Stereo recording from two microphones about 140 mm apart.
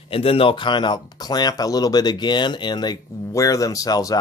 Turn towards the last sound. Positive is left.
turn(degrees=25)  # may be behind; listen again after turning